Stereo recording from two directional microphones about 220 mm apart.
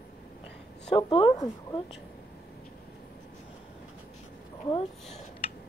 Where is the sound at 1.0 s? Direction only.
25° left (ahead or behind).